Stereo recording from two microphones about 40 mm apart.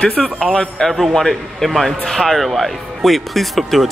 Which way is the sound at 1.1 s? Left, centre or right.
Centre.